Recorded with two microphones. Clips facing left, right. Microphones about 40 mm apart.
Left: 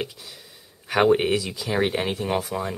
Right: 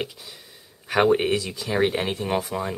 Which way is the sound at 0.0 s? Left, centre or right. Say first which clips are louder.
Even; centre.